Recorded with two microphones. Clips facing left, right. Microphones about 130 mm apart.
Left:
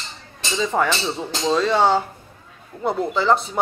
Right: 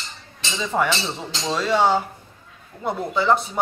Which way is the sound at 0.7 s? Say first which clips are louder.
Even; 5° left (ahead or behind).